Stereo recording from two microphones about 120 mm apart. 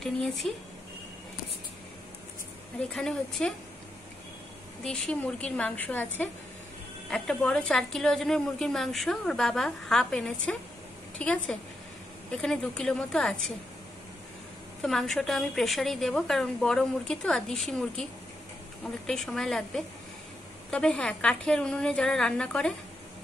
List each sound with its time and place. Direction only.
0.4 s a woman's voice: 5° left (ahead or behind)
2.9 s a woman's voice: 5° left (ahead or behind)
4.8 s a woman's voice: 5° left (ahead or behind)
14.8 s a woman's voice: centre (ahead or behind)
19.0 s a woman's voice: 5° left (ahead or behind)